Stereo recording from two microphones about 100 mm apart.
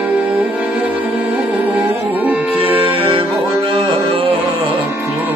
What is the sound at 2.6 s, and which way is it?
Music, 75° right (ahead or behind).